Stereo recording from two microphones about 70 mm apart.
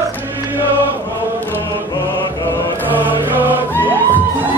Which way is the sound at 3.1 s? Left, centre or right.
Right.